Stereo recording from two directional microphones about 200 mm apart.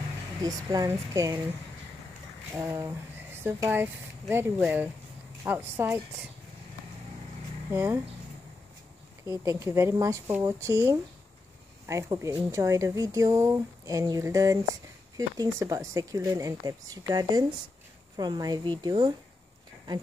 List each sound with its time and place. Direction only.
0.4 s speech: 20° right (ahead or behind)
2.5 s speech: 15° right (ahead or behind)
7.7 s speech: 10° right (ahead or behind)
9.3 s a woman's voice: 15° right (ahead or behind)